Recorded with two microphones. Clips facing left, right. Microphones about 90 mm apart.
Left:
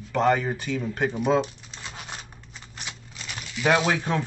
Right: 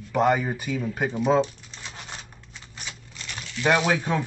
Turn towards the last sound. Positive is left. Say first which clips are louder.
# even
turn(degrees=-5)  # may be behind; listen again after turning